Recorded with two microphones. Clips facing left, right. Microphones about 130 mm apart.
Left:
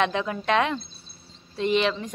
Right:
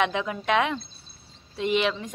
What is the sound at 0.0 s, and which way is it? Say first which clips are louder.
A woman's voice: left 1 dB; 10° right (ahead or behind).